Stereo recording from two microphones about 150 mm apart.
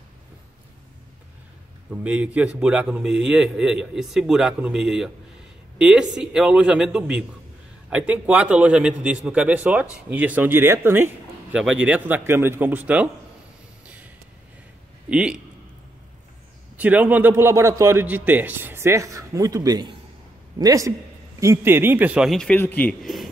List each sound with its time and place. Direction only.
1.9 s a man's voice: 10° right (ahead or behind)
15.0 s a man's voice: 5° right (ahead or behind)
16.7 s a man's voice: 10° right (ahead or behind); by 22.9 s 10° left (ahead or behind)